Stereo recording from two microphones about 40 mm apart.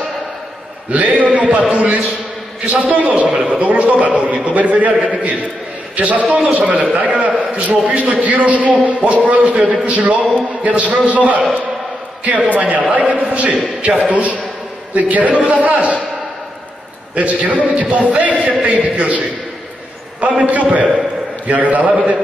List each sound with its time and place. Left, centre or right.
0.9 s a man's voice: right
3.3 s a man's voice: right
12.5 s a man's voice: right
12.8 s a man's voice: right
17.1 s a man's voice: right